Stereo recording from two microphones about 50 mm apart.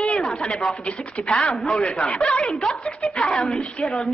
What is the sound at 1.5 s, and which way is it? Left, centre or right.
A woman's voice, centre.